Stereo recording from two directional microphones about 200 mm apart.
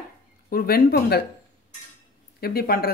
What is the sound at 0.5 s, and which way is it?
Speech, 45° left (ahead or behind).